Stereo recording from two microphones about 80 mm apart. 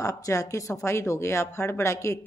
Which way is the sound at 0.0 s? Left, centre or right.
Left.